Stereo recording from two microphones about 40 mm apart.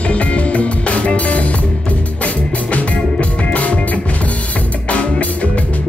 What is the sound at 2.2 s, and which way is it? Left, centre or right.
Music, left.